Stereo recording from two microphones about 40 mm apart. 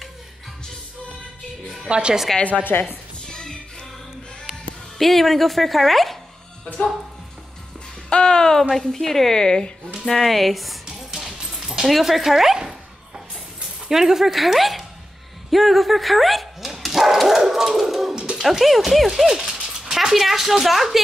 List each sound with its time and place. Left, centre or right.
1.9 s a woman's voice: right
2.7 s speech: left
3.3 s music: centre
4.9 s speech: centre
8.1 s speech: left
8.6 s a woman's voice: centre
10.0 s speech: centre
11.1 s music: centre
11.9 s speech: centre
12.5 s a sound: centre
13.8 s speech: centre
15.5 s dog: centre
18.1 s music: right
18.4 s speech: centre